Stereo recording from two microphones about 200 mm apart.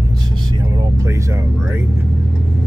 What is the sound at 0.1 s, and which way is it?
Vehicle, 20° right (ahead or behind).